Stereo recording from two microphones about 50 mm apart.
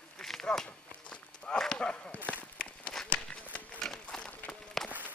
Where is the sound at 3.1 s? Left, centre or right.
Left.